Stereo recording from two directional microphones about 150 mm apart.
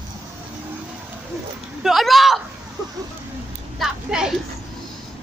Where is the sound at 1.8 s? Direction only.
Centre (ahead or behind).